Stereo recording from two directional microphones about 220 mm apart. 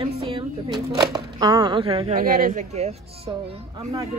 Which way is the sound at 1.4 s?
20° right (ahead or behind).